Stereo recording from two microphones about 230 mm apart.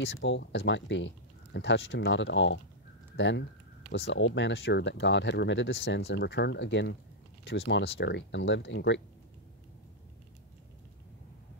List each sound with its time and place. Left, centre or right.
0.0 s speech: left